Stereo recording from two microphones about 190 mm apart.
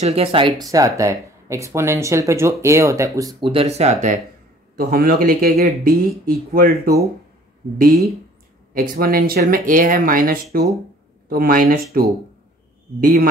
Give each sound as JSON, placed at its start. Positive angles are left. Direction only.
{"t": 0.0, "sound": "speech", "side_deg": -30}
{"t": 4.7, "sound": "speech", "side_deg": -50}
{"t": 13.0, "sound": "speech", "side_deg": -50}